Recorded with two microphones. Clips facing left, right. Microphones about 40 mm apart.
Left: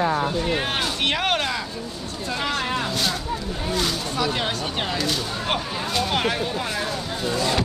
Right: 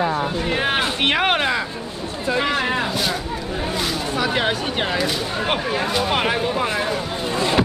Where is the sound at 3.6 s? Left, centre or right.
Centre.